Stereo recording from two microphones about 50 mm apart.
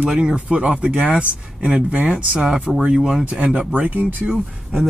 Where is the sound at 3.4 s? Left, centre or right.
Right.